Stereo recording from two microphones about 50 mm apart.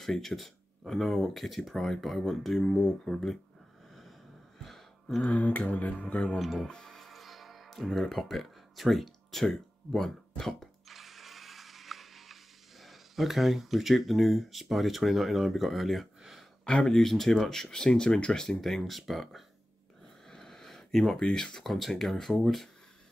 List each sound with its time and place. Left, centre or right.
0.0 s speech: centre
4.6 s a sound: centre
5.2 s a sound: left
6.3 s speech: centre
6.7 s speech: centre
7.0 s music: centre
10.9 s mechanisms: centre
16.2 s a sound: centre
16.6 s speech: centre
18.6 s speech: centre
20.2 s a sound: centre
21.2 s speech: centre